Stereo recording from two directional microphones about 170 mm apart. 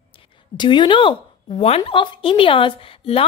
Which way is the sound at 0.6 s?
25° left (ahead or behind).